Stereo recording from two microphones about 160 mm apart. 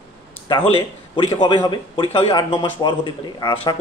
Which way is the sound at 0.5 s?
30° left (ahead or behind).